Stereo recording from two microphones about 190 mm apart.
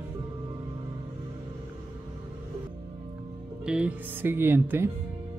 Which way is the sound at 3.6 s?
5° right (ahead or behind).